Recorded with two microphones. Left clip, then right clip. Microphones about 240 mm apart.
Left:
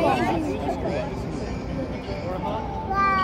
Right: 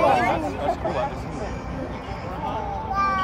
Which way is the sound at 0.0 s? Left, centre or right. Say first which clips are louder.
Right 3 dB; centre.